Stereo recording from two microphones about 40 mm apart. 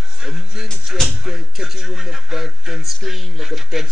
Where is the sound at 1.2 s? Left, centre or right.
Centre.